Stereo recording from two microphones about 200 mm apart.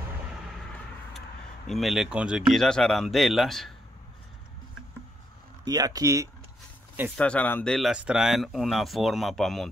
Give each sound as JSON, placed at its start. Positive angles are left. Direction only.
{"t": 1.7, "sound": "speech", "side_deg": 0}
{"t": 5.7, "sound": "speech", "side_deg": -20}
{"t": 7.2, "sound": "speech", "side_deg": 5}